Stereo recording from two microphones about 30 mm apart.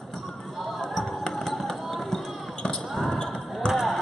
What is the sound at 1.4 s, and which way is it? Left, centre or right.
Fireworks, centre.